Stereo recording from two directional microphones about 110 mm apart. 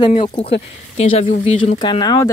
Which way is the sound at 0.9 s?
65° left (ahead or behind).